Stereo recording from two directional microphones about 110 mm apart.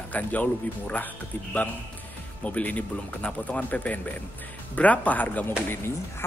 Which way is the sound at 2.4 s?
15° left (ahead or behind).